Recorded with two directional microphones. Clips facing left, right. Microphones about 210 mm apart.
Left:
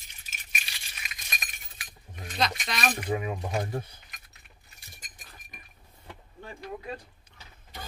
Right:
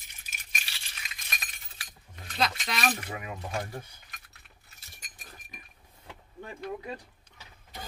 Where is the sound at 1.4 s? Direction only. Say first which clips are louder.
Left 2 dB; 20° left (ahead or behind).